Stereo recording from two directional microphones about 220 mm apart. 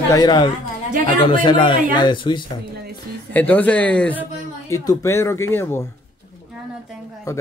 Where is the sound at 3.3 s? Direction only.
5° left (ahead or behind).